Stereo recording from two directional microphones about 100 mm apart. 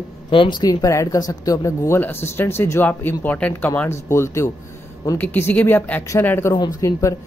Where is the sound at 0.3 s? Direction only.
55° left (ahead or behind); by 2.0 s 35° left (ahead or behind).